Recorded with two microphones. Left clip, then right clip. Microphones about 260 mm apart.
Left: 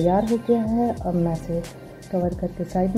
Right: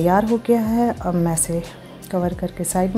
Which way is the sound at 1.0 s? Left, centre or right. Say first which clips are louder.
Right 3 dB; right.